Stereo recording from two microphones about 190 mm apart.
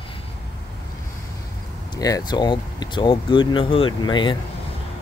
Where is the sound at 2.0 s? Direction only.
20° left (ahead or behind).